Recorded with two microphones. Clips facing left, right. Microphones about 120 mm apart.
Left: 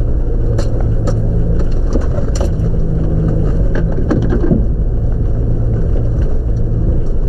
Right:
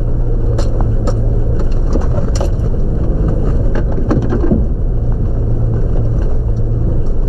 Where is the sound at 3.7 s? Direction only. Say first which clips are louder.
Left 1 dB; centre (ahead or behind).